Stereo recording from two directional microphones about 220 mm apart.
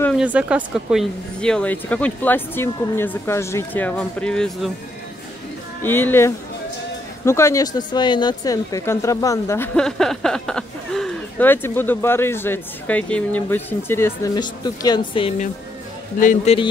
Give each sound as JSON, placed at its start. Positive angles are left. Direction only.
{"t": 0.1, "sound": "speech", "side_deg": -5}
{"t": 5.8, "sound": "speech", "side_deg": 10}
{"t": 9.8, "sound": "speech", "side_deg": 0}
{"t": 15.1, "sound": "a woman's voice", "side_deg": 30}